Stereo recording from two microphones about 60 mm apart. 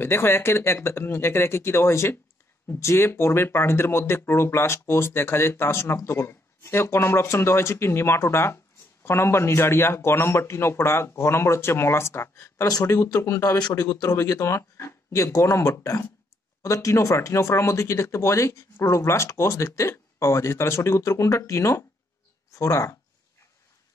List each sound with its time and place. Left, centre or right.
0.0 s speech: left
12.8 s speech: left
13.3 s speech: left
13.8 s speech: left